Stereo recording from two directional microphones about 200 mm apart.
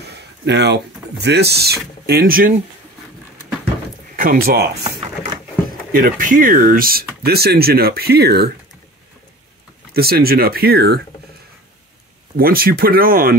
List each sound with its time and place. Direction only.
0.1 s speech: 55° right (ahead or behind)
4.2 s speech: 50° right (ahead or behind)
9.9 s speech: 50° right (ahead or behind)
12.4 s speech: 50° right (ahead or behind)